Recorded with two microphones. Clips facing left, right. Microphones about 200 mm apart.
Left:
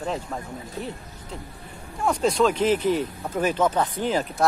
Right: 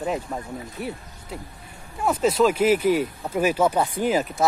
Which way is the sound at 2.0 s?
5° right (ahead or behind).